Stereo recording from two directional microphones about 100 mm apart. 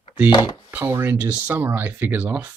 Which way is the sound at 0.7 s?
20° right (ahead or behind).